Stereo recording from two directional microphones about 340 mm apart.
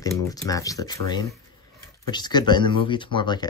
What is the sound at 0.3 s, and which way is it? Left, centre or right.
Speech, centre.